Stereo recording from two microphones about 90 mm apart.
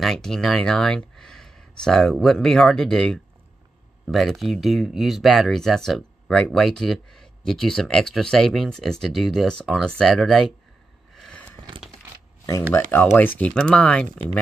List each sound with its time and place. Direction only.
0.0 s speech: 5° left (ahead or behind)
13.1 s speech: 20° left (ahead or behind)